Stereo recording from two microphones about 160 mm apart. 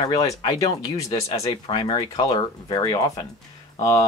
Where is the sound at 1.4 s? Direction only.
35° left (ahead or behind).